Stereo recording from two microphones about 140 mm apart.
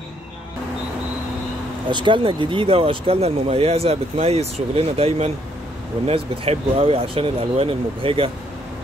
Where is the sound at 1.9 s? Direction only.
35° right (ahead or behind).